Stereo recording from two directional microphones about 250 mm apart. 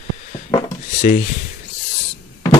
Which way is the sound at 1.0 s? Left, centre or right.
Left.